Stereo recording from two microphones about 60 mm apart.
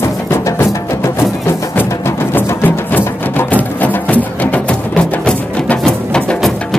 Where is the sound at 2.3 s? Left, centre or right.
Left.